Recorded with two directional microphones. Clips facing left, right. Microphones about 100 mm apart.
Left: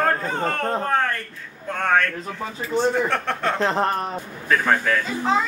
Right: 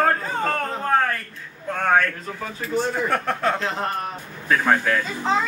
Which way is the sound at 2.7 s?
5° right (ahead or behind).